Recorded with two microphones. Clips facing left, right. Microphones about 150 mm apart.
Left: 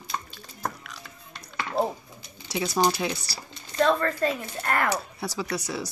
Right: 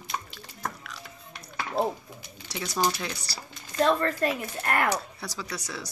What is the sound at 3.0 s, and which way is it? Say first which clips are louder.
Speech: left 6 dB; 10° left (ahead or behind).